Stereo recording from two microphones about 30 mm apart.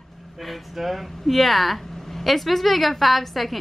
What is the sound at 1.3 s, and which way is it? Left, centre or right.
A woman's voice, centre.